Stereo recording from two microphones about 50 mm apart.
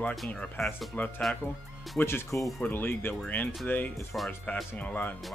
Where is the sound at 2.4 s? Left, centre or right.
Centre.